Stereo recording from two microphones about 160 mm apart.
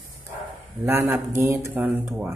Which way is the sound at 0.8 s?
15° right (ahead or behind).